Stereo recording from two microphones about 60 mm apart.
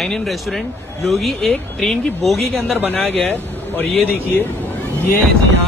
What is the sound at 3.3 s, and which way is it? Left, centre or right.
Speech, left.